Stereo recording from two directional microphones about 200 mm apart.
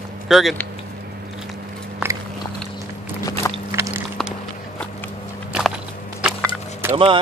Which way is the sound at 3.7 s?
15° right (ahead or behind).